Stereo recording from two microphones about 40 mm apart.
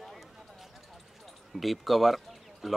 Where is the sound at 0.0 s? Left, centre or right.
Centre.